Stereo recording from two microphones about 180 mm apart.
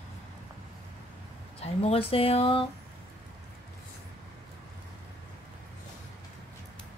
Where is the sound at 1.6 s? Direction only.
35° left (ahead or behind).